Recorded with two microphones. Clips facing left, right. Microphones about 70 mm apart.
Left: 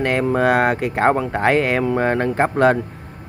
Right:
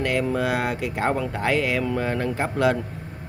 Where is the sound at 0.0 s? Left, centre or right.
Left.